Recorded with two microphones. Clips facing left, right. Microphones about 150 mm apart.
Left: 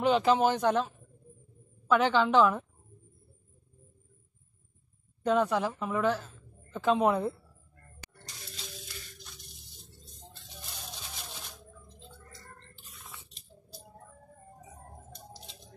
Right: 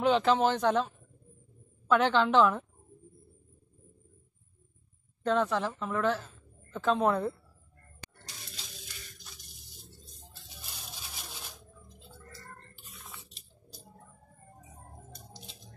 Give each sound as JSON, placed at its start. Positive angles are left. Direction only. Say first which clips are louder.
{"t": 0.0, "sound": "speech", "louder": "left 1 dB", "side_deg": 5}
{"t": 5.2, "sound": "a woman's voice", "louder": "left 2 dB", "side_deg": 10}
{"t": 8.5, "sound": "music", "louder": "left 4 dB", "side_deg": 0}
{"t": 12.0, "sound": "a sound", "louder": "right 3 dB", "side_deg": -5}
{"t": 12.8, "sound": "chewing", "louder": "even", "side_deg": 0}